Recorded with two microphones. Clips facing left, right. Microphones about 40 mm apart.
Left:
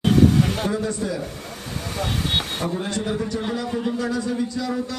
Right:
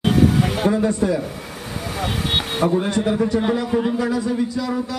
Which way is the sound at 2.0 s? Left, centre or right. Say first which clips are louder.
Right 2 dB; centre.